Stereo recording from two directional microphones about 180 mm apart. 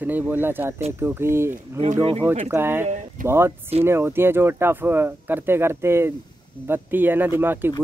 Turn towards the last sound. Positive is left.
turn(degrees=-10)  # may be behind; listen again after turning